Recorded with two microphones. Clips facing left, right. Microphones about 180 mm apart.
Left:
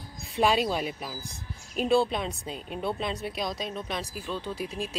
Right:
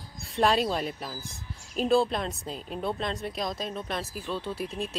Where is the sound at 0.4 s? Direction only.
Centre (ahead or behind).